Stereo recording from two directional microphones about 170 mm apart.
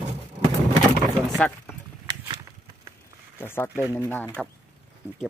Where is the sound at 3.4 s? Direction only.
15° left (ahead or behind).